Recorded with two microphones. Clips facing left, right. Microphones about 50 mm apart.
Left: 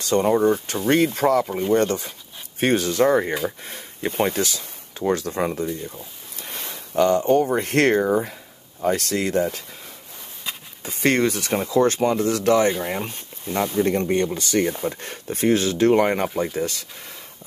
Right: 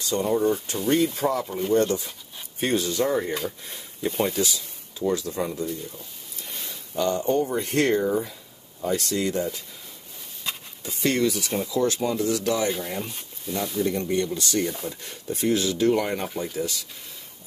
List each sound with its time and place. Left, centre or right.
0.0 s speech: left
6.4 s speech: left
8.0 s speech: left
8.8 s speech: left
10.4 s a sound: centre
10.8 s speech: left